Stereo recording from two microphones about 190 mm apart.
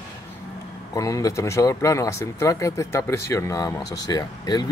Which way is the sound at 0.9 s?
15° left (ahead or behind).